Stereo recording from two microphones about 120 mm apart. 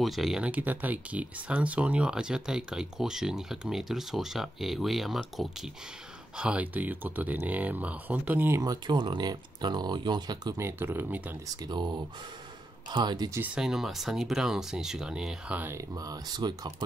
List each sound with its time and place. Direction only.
0.0 s speech: centre (ahead or behind); by 8.6 s 15° right (ahead or behind)
8.6 s speech: 40° right (ahead or behind)
10.6 s speech: 20° right (ahead or behind)
11.4 s speech: 35° right (ahead or behind)
13.6 s speech: 5° right (ahead or behind)
15.9 s speech: 30° right (ahead or behind)